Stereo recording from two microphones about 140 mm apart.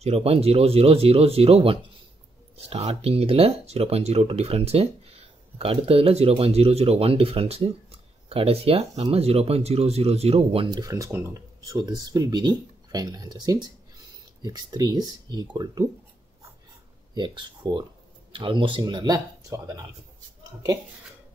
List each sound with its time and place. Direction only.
0.0 s speech: 45° right (ahead or behind)
10.8 s speech: 20° right (ahead or behind)
17.1 s speech: 30° right (ahead or behind)